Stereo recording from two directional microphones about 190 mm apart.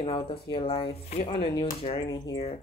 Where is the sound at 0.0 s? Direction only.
30° left (ahead or behind).